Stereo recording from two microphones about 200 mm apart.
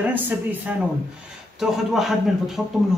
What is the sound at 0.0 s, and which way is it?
Speech, 10° right (ahead or behind).